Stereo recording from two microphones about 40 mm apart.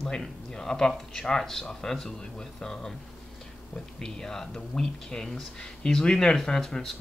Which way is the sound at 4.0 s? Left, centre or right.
Centre.